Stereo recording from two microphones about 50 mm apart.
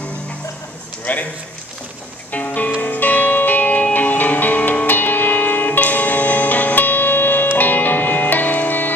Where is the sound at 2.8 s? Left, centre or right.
Left.